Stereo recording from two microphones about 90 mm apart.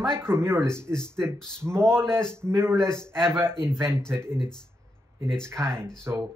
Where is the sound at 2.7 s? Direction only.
5° left (ahead or behind).